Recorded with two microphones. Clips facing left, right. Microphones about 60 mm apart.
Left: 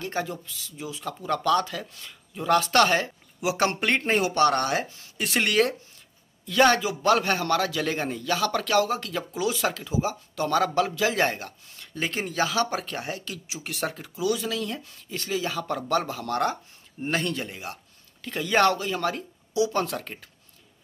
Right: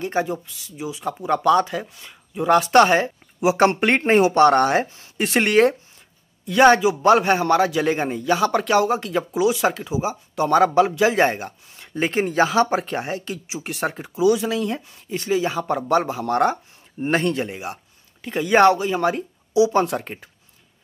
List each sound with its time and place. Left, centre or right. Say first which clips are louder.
0.0 s a man's voice: right 7 dB; centre